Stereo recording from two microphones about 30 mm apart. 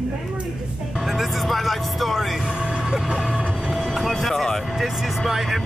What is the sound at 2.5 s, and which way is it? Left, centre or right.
Speech, right.